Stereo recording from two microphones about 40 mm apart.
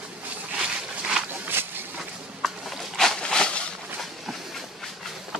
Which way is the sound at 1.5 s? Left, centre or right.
Right.